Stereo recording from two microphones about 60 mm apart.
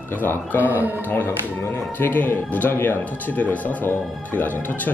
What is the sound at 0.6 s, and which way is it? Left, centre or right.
Speech, right.